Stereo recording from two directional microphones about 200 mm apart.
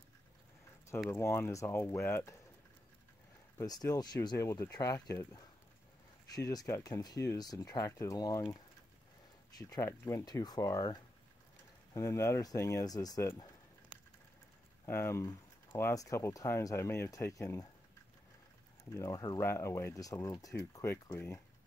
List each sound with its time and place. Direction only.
1.1 s speech: 15° left (ahead or behind)
3.5 s speech: 20° left (ahead or behind)
9.6 s speech: 15° left (ahead or behind)
13.9 s a sound: 5° right (ahead or behind)
14.9 s speech: 10° left (ahead or behind)
18.9 s speech: 15° left (ahead or behind)